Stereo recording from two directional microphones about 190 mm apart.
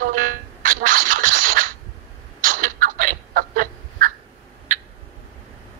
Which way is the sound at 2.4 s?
45° right (ahead or behind).